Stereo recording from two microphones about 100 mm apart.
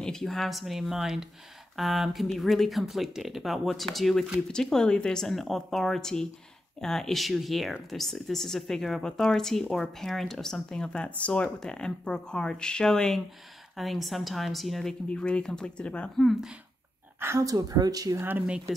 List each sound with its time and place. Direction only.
0.0 s a woman's voice: 5° left (ahead or behind)
17.2 s speech: 30° right (ahead or behind)
18.2 s speech: 20° right (ahead or behind)